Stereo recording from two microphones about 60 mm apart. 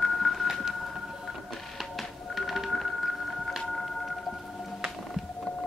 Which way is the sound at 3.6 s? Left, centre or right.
Centre.